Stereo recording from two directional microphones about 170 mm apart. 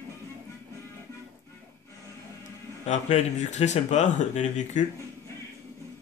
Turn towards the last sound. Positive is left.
turn(degrees=45)  # may be behind; listen again after turning